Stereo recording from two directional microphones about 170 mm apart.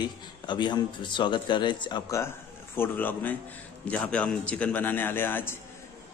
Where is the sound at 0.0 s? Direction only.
25° left (ahead or behind).